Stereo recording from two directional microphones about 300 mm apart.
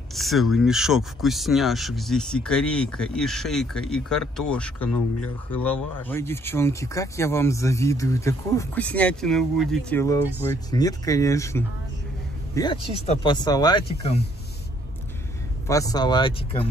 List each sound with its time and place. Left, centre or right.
0.1 s speech: centre
15.6 s speech: centre